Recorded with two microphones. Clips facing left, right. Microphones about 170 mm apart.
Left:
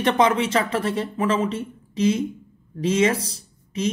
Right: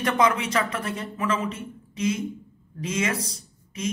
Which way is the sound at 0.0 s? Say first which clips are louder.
Left 4 dB; 30° left (ahead or behind).